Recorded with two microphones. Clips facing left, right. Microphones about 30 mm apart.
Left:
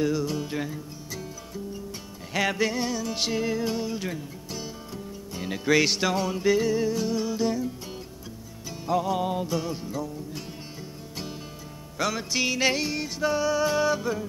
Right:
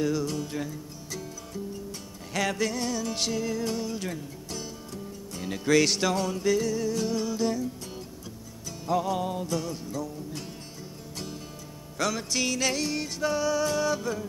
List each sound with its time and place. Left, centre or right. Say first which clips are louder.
0.0 s music: left 2 dB; centre
3.0 s music: left 1 dB; centre
3.3 s music: left 5 dB; left
7.0 s music: left 1 dB; centre
9.2 s music: left 3 dB; left
12.0 s music: left 2 dB; centre
12.9 s music: left 2 dB; centre